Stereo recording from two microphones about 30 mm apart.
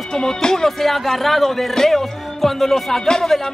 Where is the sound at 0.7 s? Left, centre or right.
Centre.